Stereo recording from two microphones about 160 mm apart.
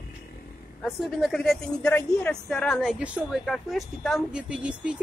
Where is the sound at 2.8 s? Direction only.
5° right (ahead or behind).